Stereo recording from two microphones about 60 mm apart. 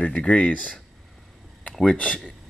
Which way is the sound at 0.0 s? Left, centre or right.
Left.